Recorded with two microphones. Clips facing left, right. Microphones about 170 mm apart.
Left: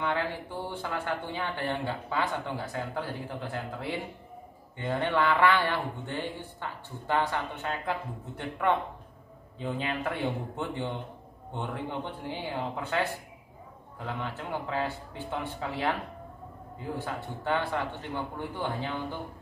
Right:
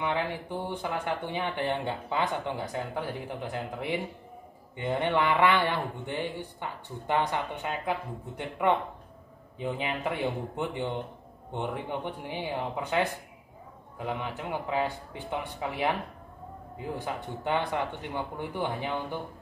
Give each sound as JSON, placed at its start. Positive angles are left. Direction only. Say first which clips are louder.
{"t": 0.0, "sound": "speech", "louder": "even", "side_deg": -15}
{"t": 17.0, "sound": "speech", "louder": "right 1 dB", "side_deg": -15}